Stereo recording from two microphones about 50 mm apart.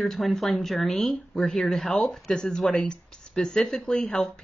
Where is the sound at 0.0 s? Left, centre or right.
Centre.